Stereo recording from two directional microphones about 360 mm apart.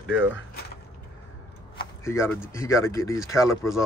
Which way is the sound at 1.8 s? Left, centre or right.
Centre.